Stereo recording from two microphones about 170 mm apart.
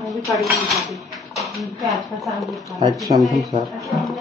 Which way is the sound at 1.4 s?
Centre (ahead or behind).